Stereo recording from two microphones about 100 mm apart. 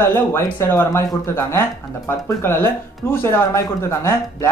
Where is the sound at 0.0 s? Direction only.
25° left (ahead or behind).